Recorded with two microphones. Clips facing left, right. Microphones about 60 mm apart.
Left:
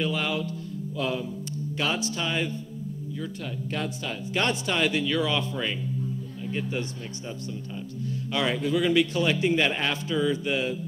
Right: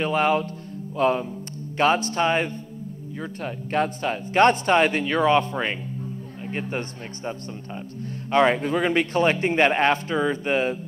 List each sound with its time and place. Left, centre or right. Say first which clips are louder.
0.0 s a man's voice: right 7 dB; right